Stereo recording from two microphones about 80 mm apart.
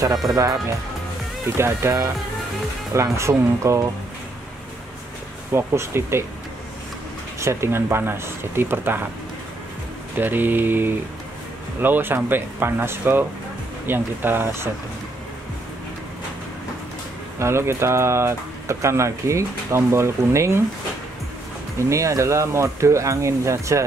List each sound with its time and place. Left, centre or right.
0.3 s speech: right
1.6 s speech: right
5.5 s speech: right
7.3 s speech: right
10.1 s speech: right
17.4 s speech: right
21.7 s speech: right